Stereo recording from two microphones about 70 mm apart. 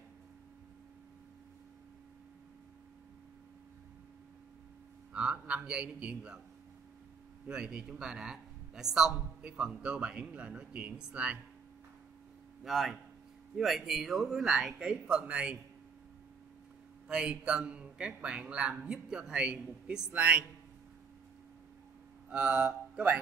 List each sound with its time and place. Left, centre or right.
5.1 s a man's voice: centre
7.4 s a man's voice: centre
12.6 s a man's voice: centre
17.1 s a man's voice: centre
22.3 s speech: centre